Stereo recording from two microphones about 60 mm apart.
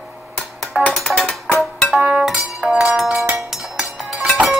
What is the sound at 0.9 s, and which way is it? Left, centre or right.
Music, centre.